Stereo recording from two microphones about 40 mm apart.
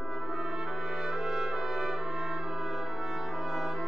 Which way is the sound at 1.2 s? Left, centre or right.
Centre.